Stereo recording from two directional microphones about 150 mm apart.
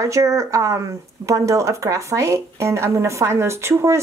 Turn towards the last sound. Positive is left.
turn(degrees=-20)  # may be behind; listen again after turning